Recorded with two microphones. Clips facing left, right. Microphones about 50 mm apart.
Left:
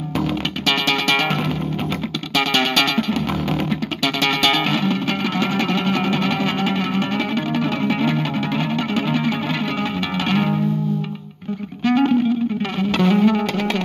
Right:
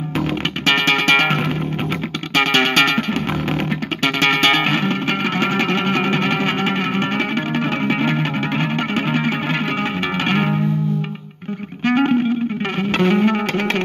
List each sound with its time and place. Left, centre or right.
0.7 s music: right
11.8 s music: right